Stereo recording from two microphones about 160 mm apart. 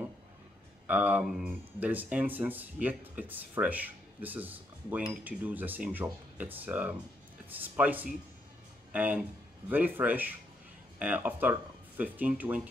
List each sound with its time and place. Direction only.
0.8 s speech: 10° right (ahead or behind)